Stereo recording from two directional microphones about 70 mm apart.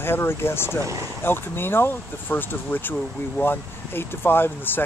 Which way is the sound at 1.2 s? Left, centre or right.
Left.